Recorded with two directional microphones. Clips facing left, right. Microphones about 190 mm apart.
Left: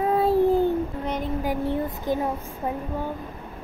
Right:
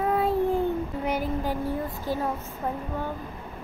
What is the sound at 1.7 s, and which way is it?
Speech, 20° left (ahead or behind).